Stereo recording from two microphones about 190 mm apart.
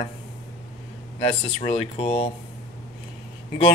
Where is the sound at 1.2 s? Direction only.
30° left (ahead or behind).